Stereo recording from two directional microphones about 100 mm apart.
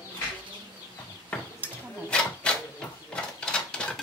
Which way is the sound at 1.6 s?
20° right (ahead or behind).